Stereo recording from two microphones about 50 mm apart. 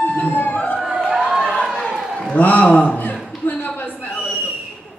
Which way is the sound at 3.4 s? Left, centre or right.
Left.